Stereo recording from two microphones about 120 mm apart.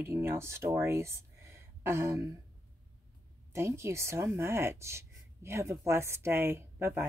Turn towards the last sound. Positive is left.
turn(degrees=-20)  # may be behind; listen again after turning